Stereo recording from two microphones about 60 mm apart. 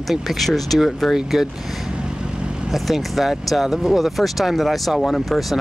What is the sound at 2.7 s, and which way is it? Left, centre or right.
Speech, centre.